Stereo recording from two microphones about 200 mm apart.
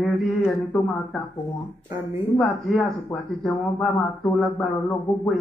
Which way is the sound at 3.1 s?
15° left (ahead or behind).